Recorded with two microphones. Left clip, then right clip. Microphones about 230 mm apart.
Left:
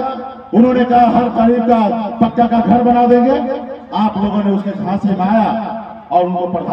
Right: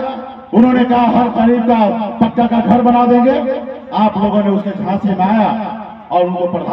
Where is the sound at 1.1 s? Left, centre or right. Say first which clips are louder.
Even; right.